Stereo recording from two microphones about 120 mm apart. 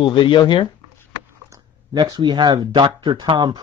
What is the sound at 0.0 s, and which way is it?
Speech, 45° left (ahead or behind).